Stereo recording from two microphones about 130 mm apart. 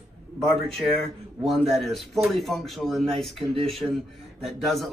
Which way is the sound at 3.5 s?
50° right (ahead or behind).